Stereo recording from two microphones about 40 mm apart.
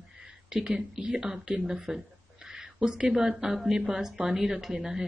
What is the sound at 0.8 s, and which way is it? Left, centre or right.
Speech, centre.